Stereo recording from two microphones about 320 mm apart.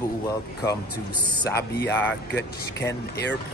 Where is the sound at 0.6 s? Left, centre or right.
Centre.